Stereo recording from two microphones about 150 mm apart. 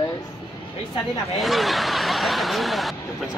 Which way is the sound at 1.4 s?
Centre (ahead or behind).